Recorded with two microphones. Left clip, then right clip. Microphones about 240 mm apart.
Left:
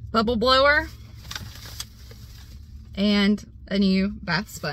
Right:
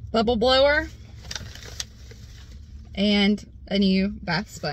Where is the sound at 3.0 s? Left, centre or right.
Centre.